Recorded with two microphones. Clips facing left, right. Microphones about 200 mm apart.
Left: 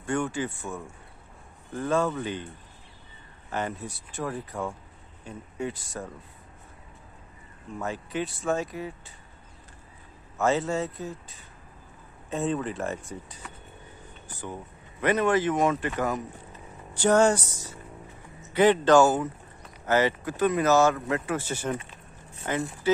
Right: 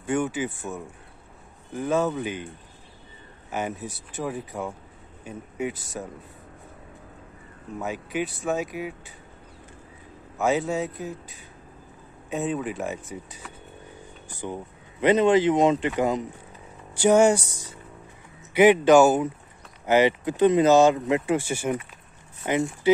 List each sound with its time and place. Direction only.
0.0 s speech: 20° right (ahead or behind)
2.0 s a man's voice: 15° right (ahead or behind)
3.4 s a man's voice: 5° right (ahead or behind)
6.0 s a man's voice: 10° right (ahead or behind)
7.7 s speech: 5° right (ahead or behind)
8.5 s a man's voice: 15° right (ahead or behind)
10.3 s a man's voice: 15° right (ahead or behind)
12.4 s a man's voice: 5° right (ahead or behind)
14.3 s a man's voice: 20° right (ahead or behind)